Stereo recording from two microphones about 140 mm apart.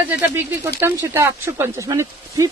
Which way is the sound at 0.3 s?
15° right (ahead or behind).